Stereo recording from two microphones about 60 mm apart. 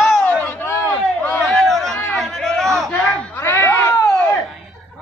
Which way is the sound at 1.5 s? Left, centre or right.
Centre.